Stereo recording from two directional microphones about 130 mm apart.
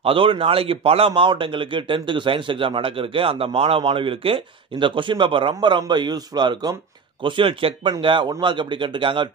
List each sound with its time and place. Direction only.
0.0 s a man's voice: 45° right (ahead or behind)